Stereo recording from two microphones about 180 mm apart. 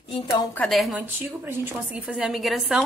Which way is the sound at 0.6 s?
Centre (ahead or behind).